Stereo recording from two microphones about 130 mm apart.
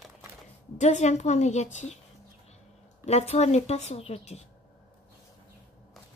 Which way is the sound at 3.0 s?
55° left (ahead or behind).